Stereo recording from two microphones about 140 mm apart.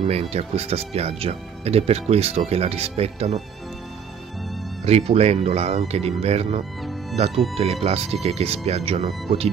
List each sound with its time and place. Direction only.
0.0 s speech: 50° right (ahead or behind)
4.8 s speech: 50° right (ahead or behind)